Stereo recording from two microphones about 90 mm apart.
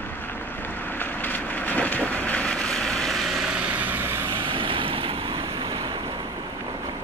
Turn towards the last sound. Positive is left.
turn(degrees=-90)